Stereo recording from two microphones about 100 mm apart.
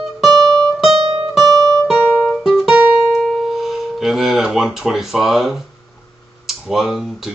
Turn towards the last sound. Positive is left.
turn(degrees=0)  # may be behind; listen again after turning